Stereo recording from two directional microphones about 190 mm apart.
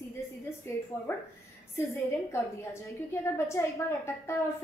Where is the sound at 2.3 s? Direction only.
15° left (ahead or behind).